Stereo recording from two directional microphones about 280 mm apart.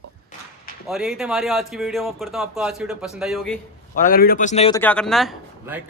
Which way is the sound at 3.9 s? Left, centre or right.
Left.